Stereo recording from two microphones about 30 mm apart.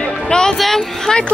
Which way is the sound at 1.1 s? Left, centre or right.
Left.